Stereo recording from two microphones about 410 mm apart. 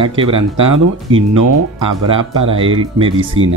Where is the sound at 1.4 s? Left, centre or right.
Right.